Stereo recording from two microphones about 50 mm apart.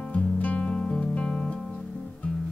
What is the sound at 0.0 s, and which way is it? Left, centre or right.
Music, left.